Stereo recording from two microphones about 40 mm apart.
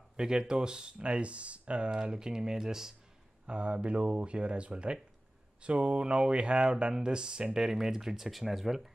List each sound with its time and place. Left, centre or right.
0.2 s speech: centre
3.4 s speech: right; by 8.8 s centre